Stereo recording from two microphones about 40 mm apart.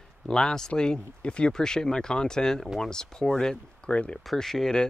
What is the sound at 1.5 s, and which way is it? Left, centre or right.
Speech, centre.